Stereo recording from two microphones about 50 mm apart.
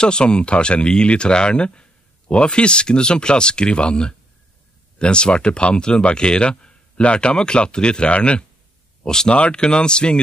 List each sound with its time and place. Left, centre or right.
0.0 s speech: centre